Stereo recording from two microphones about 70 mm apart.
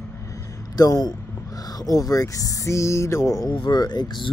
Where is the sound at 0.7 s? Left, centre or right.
Left.